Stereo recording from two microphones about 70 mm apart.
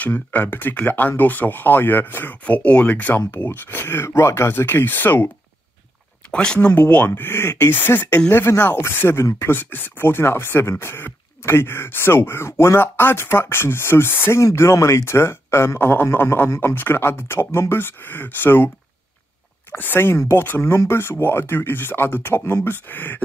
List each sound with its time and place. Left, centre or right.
0.0 s speech: left
3.3 s speech: left
6.3 s speech: centre
6.6 s speech: left
19.7 s speech: left